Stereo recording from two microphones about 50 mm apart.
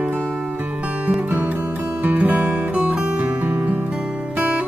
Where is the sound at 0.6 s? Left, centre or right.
Right.